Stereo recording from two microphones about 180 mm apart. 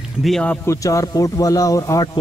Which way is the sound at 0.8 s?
20° left (ahead or behind).